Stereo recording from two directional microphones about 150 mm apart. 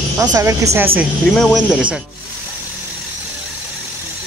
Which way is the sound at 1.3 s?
Centre (ahead or behind).